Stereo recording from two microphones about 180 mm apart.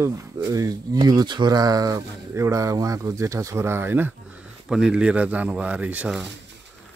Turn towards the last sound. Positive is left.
turn(degrees=-5)  # may be behind; listen again after turning